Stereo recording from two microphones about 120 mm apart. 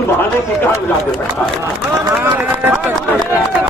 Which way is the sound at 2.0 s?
20° right (ahead or behind).